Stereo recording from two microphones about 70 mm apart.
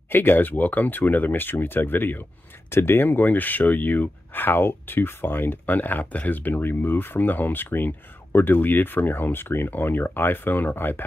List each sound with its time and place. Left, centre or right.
0.1 s speech: left